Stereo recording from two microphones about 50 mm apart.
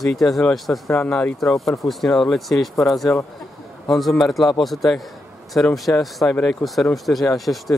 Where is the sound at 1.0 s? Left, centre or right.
Left.